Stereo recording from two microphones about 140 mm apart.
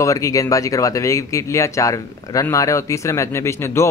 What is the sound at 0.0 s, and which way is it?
Speech, 25° left (ahead or behind).